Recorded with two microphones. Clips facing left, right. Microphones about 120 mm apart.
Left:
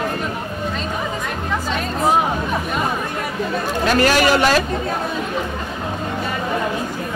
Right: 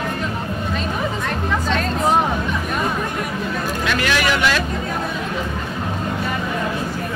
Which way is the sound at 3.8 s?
40° left (ahead or behind).